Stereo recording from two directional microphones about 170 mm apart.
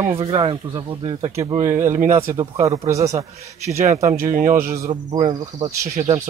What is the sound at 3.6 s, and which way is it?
Speech, 40° right (ahead or behind).